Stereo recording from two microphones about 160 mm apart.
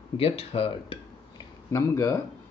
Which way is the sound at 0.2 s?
35° left (ahead or behind).